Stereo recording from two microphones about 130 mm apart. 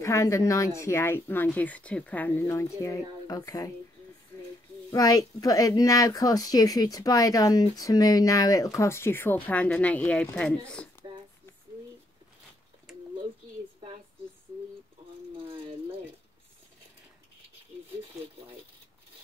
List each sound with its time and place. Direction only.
0.0 s speech: 20° left (ahead or behind)
4.9 s speech: 30° left (ahead or behind); by 10.2 s 10° left (ahead or behind)
10.7 s a sound: 10° left (ahead or behind)